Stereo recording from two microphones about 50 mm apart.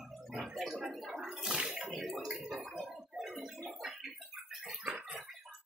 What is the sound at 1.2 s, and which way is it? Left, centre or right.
Bathtub, centre.